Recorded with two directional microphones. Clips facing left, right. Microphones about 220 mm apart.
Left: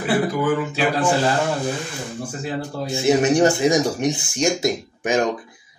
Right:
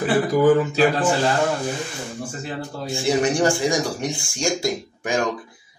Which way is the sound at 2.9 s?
20° left (ahead or behind).